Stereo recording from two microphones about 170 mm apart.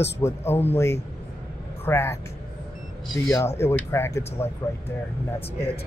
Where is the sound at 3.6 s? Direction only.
15° left (ahead or behind).